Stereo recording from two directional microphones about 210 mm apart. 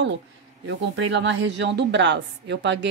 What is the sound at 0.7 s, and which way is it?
Speech, 60° right (ahead or behind).